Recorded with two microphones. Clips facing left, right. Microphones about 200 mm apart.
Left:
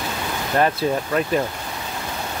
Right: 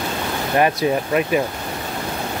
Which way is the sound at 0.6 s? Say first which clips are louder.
Right 2 dB; 15° right (ahead or behind).